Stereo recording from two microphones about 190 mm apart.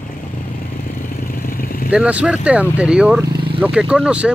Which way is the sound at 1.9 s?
5° right (ahead or behind).